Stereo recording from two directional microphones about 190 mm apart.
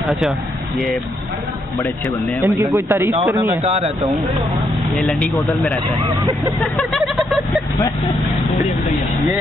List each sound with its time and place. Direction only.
2.4 s speech: 15° right (ahead or behind)
3.6 s speech: 30° right (ahead or behind)
4.9 s speech: 5° left (ahead or behind)
6.6 s vehicle: centre (ahead or behind)